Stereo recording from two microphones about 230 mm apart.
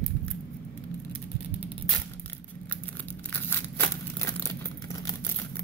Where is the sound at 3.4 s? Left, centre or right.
Centre.